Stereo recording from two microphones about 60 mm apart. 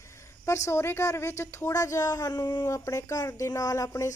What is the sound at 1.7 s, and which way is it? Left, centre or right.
Speech, left.